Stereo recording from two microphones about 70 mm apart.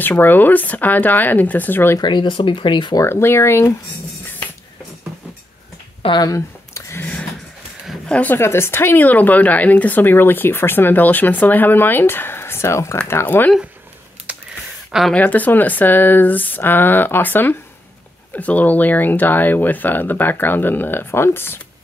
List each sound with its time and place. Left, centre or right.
0.0 s speech: left
2.0 s speech: left
3.0 s speech: left
6.3 s a sound: left
8.1 s speech: left
8.4 s speech: left
13.1 s speech: left
14.9 s speech: centre
15.1 s speech: left